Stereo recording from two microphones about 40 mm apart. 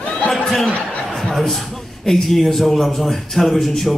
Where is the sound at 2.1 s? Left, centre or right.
Centre.